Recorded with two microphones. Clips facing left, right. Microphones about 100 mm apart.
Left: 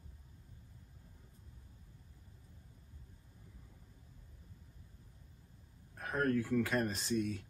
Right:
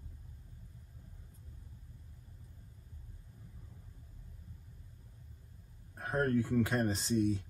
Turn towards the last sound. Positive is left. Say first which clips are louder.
# right 4 dB
turn(degrees=-25)  # may be behind; listen again after turning